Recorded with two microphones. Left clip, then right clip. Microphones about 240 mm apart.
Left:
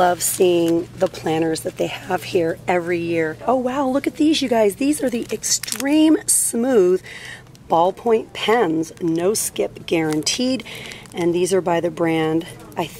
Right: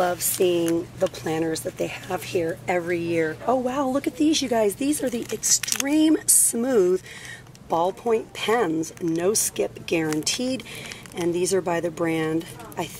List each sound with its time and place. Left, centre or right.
0.4 s speech: centre
0.7 s speech: centre